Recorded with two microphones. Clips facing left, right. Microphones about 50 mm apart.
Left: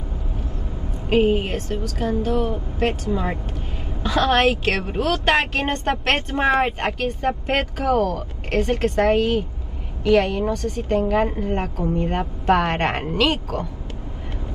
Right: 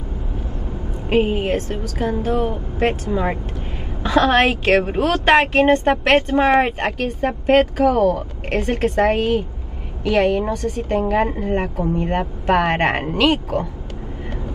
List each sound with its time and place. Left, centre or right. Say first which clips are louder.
1.5 s a woman's voice: right 4 dB; right
4.0 s a woman's voice: right 3 dB; centre
7.7 s a woman's voice: right 4 dB; centre
8.0 s a woman's voice: right 5 dB; right
11.5 s a woman's voice: right 3 dB; right